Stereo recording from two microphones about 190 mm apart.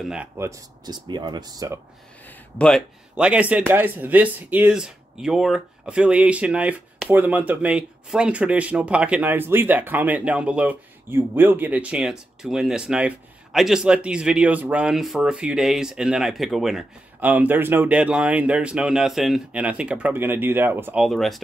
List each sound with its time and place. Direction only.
0.0 s speech: 5° right (ahead or behind)
2.2 s a sound: 5° left (ahead or behind)
3.2 s speech: 5° right (ahead or behind)